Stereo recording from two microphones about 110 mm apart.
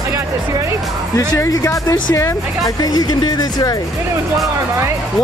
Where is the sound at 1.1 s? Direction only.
30° left (ahead or behind).